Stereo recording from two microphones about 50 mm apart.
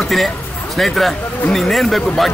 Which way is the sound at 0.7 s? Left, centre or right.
Centre.